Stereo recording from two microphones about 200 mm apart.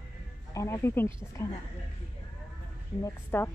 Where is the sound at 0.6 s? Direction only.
15° left (ahead or behind).